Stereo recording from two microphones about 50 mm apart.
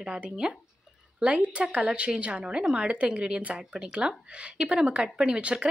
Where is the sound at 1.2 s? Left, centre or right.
Right.